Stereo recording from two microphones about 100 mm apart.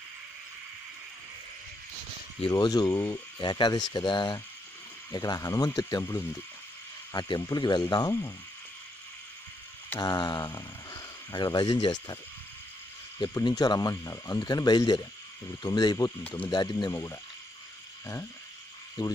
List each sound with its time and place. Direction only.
2.5 s speech: 40° left (ahead or behind)
6.0 s speech: 25° left (ahead or behind)
7.1 s speech: 45° left (ahead or behind)
9.9 s speech: 45° left (ahead or behind)
13.2 s speech: 45° left (ahead or behind)
19.0 s speech: 50° left (ahead or behind)